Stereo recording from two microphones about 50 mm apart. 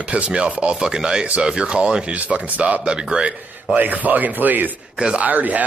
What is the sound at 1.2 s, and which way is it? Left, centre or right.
Speech, right.